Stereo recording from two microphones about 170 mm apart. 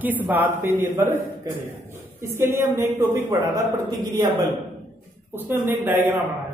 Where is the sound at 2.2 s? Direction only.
15° right (ahead or behind).